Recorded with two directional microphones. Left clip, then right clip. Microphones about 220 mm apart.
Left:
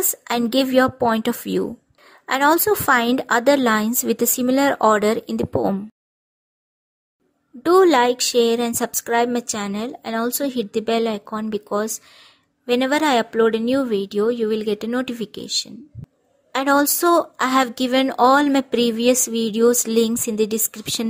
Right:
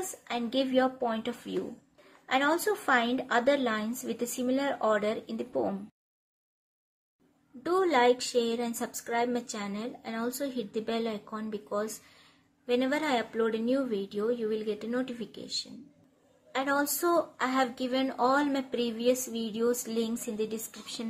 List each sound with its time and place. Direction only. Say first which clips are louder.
0.2 s a woman's voice: left 10 dB; 50° left (ahead or behind)
7.6 s a woman's voice: left 10 dB; 45° left (ahead or behind)